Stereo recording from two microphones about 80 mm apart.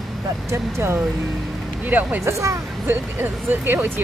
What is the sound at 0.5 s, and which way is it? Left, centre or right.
Speech, right.